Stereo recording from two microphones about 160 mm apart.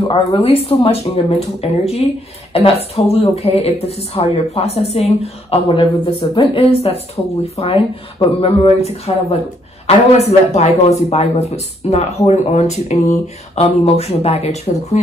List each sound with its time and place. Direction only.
0.1 s a woman's voice: 35° left (ahead or behind)